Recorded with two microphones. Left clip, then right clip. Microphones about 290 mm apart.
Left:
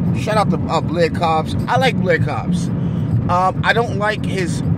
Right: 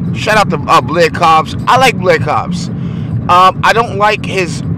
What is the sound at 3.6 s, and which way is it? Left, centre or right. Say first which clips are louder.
Speech: right 7 dB; right.